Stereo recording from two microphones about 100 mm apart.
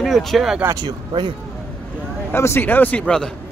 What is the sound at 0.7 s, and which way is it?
Speech, 50° right (ahead or behind).